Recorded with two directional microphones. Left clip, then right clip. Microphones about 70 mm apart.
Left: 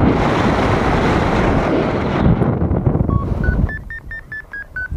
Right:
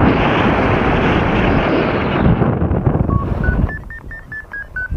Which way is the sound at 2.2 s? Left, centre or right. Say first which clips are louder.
Right 1 dB; left.